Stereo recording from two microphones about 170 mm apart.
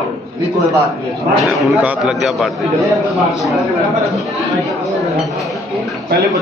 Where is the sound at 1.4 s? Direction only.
Centre (ahead or behind).